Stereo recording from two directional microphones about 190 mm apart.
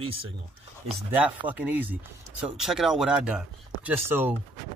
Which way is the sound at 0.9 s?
5° right (ahead or behind).